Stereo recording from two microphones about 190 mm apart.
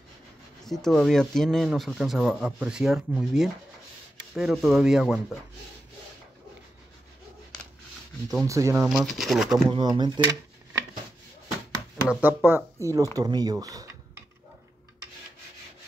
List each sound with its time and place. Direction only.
0.7 s speech: centre (ahead or behind)
8.3 s speech: 15° right (ahead or behind)
8.8 s speech: centre (ahead or behind)
9.7 s speech: 25° right (ahead or behind)
12.1 s speech: 10° right (ahead or behind)